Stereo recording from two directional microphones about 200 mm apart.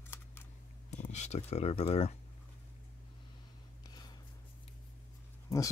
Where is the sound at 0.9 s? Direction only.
35° left (ahead or behind).